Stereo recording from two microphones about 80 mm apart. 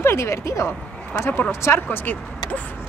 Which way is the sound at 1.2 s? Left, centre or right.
Left.